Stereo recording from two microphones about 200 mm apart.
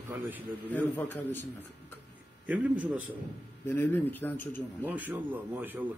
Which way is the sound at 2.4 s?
5° right (ahead or behind).